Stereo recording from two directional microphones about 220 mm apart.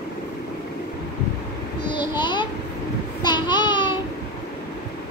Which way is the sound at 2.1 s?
20° left (ahead or behind).